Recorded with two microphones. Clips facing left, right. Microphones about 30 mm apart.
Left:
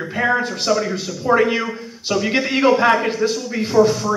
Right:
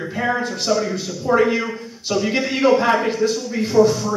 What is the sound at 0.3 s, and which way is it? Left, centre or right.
A man's voice, centre.